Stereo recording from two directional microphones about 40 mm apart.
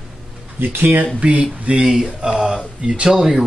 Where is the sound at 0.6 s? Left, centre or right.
Right.